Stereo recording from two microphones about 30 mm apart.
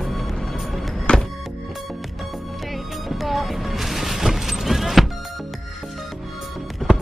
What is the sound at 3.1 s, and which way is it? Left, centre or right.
Music, centre.